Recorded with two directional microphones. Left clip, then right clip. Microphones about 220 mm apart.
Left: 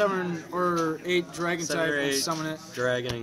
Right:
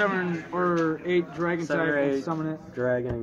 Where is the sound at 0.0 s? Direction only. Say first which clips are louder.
Even; 10° left (ahead or behind).